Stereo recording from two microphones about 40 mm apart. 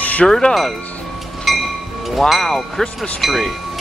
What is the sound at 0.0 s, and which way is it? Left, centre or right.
Music, left.